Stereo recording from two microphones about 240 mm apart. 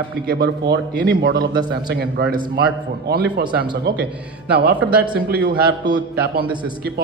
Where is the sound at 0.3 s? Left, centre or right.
Right.